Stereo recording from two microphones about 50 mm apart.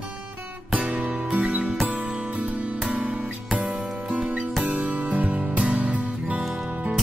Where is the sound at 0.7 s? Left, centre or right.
Right.